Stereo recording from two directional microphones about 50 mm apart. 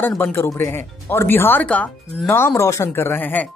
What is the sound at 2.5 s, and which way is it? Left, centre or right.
Speech, left.